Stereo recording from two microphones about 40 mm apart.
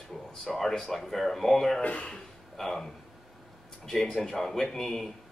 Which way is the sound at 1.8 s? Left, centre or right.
Left.